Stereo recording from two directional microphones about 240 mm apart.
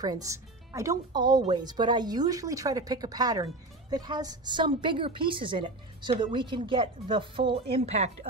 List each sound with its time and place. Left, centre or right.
0.0 s a woman's voice: centre